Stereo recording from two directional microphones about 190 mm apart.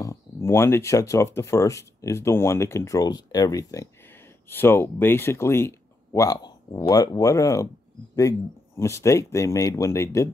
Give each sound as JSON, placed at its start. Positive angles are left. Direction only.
{"t": 0.0, "sound": "speech", "side_deg": 15}